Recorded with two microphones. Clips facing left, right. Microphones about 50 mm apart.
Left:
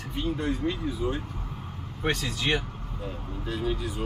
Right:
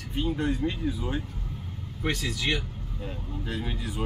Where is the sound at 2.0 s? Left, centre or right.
Left.